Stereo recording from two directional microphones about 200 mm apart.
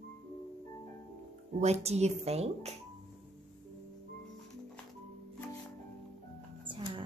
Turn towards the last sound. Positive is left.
turn(degrees=-25)  # may be behind; listen again after turning